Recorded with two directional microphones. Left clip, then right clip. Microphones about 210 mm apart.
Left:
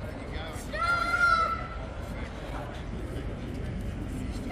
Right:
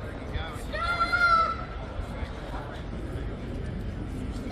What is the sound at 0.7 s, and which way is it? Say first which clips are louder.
Child singing: right 1 dB; 55° left (ahead or behind).